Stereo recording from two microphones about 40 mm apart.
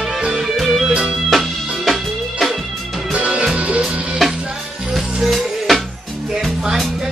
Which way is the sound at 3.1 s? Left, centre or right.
Right.